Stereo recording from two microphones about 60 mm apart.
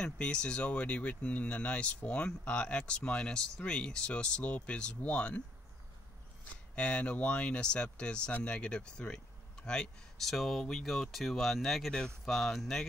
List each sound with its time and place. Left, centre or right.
0.0 s speech: centre
6.7 s speech: left
10.3 s speech: centre